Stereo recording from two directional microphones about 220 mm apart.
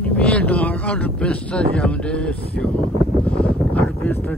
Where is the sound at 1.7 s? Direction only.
5° left (ahead or behind).